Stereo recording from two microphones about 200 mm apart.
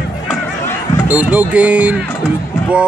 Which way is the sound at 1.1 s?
5° right (ahead or behind).